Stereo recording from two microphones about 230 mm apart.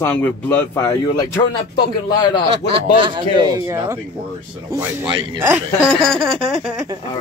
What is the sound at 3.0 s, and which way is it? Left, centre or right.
A man's voice, centre.